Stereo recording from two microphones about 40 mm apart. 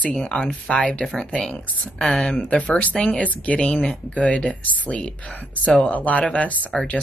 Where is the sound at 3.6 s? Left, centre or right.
Left.